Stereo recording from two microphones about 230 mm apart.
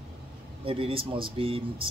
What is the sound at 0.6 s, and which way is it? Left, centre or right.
A man's voice, right.